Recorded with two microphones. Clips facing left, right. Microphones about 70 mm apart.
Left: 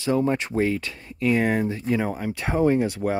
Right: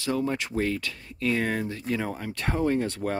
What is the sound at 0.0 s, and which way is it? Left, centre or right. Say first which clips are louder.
Speech: left 5 dB; left.